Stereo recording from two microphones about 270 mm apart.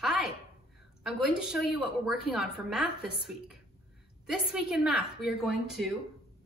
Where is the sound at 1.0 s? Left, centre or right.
Centre.